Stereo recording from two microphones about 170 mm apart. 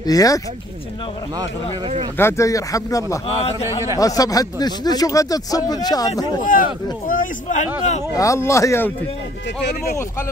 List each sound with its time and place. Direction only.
0.0 s speech: 20° left (ahead or behind)
2.1 s speech: 15° left (ahead or behind)
6.4 s speech: 55° left (ahead or behind)
8.2 s speech: 15° left (ahead or behind)